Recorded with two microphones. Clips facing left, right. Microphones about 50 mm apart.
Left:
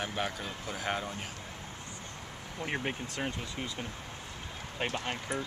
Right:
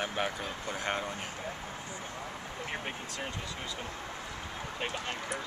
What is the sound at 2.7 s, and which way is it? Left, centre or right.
Speech, centre.